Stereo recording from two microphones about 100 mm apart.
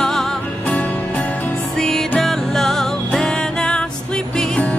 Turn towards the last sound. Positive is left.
turn(degrees=10)  # may be behind; listen again after turning